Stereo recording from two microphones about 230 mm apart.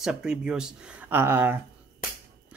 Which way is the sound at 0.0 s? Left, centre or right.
Centre.